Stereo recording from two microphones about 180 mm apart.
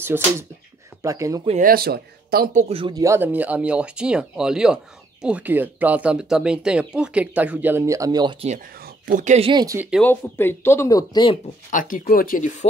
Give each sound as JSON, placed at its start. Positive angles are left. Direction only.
{"t": 0.0, "sound": "speech", "side_deg": -10}
{"t": 1.6, "sound": "speech", "side_deg": -55}
{"t": 2.7, "sound": "speech", "side_deg": -30}
{"t": 3.0, "sound": "speech", "side_deg": -15}
{"t": 8.7, "sound": "speech", "side_deg": -55}
{"t": 9.5, "sound": "speech", "side_deg": -25}
{"t": 9.8, "sound": "speech", "side_deg": -5}
{"t": 10.0, "sound": "speech", "side_deg": 10}
{"t": 11.7, "sound": "speech", "side_deg": 50}